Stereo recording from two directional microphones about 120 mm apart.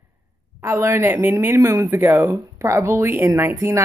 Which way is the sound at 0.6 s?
20° right (ahead or behind).